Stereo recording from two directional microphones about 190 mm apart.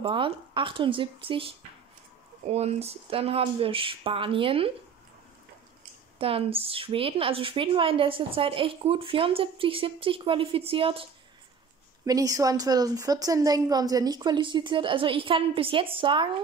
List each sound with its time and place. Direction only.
0.0 s a woman's voice: 25° right (ahead or behind)
2.5 s a woman's voice: 35° right (ahead or behind)
6.1 s a woman's voice: 30° right (ahead or behind)
12.0 s a woman's voice: 20° right (ahead or behind)